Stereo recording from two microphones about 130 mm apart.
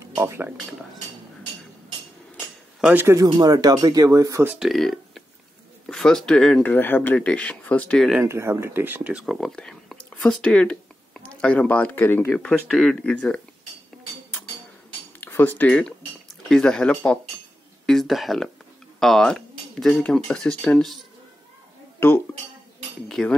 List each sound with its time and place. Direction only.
0.2 s speech: 20° right (ahead or behind)
2.8 s speech: 15° right (ahead or behind)
3.2 s speech: 30° right (ahead or behind)
4.6 s speech: centre (ahead or behind)
8.2 s speech: 20° right (ahead or behind)
9.2 s speech: centre (ahead or behind)
15.1 s speech: 15° left (ahead or behind)
23.0 s speech: 5° left (ahead or behind)